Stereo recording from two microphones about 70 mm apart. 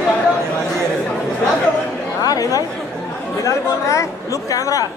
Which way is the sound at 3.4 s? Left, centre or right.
Left.